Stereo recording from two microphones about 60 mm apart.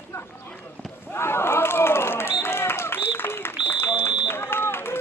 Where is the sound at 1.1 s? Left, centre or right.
Left.